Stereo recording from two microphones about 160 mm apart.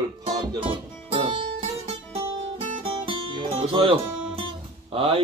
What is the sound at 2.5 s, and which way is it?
Music, 30° right (ahead or behind).